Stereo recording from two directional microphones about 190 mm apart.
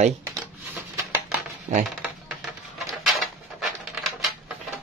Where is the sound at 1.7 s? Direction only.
35° right (ahead or behind).